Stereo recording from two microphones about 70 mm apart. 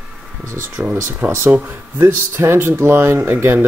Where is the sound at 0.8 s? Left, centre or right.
Right.